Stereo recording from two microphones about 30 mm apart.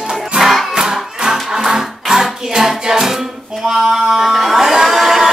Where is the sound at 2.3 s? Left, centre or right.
Centre.